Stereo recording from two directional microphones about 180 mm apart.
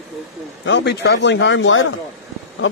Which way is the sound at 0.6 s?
80° left.